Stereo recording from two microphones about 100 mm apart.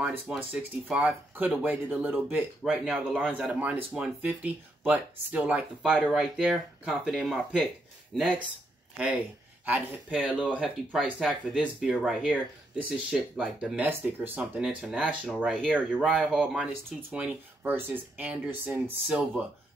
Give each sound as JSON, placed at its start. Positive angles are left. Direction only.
{"t": 0.4, "sound": "speech", "side_deg": -15}
{"t": 2.7, "sound": "speech", "side_deg": -5}
{"t": 8.9, "sound": "speech", "side_deg": -10}
{"t": 11.1, "sound": "speech", "side_deg": 0}
{"t": 12.8, "sound": "speech", "side_deg": -10}
{"t": 14.8, "sound": "speech", "side_deg": -5}